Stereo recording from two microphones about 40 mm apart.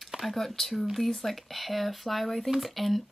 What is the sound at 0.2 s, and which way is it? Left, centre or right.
Speech, centre.